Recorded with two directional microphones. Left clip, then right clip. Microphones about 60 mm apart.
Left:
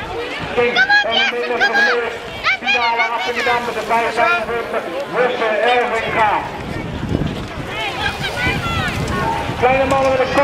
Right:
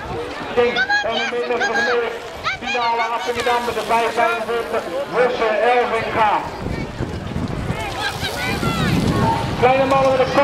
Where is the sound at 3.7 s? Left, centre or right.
Right.